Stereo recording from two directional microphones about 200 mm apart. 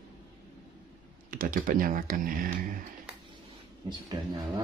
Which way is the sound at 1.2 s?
45° right (ahead or behind).